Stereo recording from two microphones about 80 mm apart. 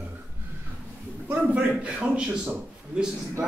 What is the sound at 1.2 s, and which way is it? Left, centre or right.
A man's voice, centre.